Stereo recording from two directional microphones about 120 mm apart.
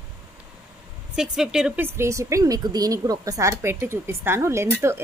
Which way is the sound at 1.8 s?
20° right (ahead or behind).